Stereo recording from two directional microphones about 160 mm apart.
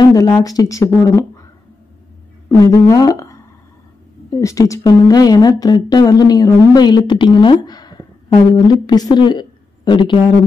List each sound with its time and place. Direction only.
0.0 s a woman's voice: 20° left (ahead or behind)
2.6 s a woman's voice: 25° left (ahead or behind)
7.6 s a sound: 25° left (ahead or behind)
8.5 s a woman's voice: 25° left (ahead or behind)